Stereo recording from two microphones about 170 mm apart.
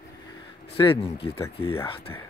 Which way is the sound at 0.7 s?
30° left (ahead or behind).